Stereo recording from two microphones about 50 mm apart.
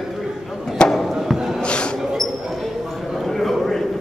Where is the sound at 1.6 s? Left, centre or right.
Left.